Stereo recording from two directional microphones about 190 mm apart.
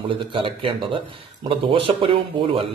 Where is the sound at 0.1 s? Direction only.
25° right (ahead or behind).